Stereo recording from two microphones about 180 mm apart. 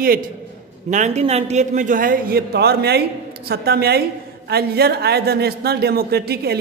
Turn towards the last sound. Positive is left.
turn(degrees=-65)  # may be behind; listen again after turning